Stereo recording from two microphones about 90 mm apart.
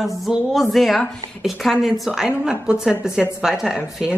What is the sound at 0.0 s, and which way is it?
A woman's voice, centre (ahead or behind).